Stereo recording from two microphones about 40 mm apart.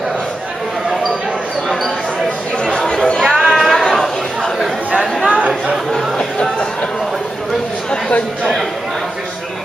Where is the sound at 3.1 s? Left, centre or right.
Centre.